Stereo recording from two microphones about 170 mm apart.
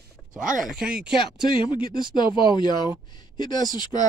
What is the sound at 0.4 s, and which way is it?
Speech, 50° right (ahead or behind).